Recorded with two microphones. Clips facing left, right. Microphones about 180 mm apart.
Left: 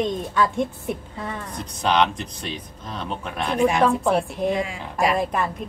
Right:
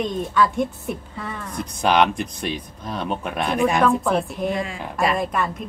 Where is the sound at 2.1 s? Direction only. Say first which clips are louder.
Right 5 dB; 10° right (ahead or behind).